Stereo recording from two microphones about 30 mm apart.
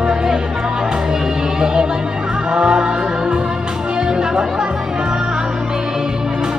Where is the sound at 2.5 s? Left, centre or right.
Right.